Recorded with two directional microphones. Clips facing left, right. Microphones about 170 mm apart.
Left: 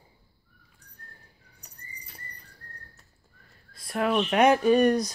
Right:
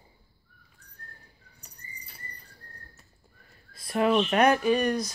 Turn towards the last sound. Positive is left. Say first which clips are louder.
# left 5 dB
turn(degrees=45)  # may be behind; listen again after turning